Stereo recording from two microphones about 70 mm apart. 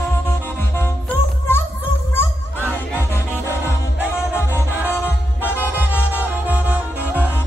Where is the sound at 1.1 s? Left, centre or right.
Left.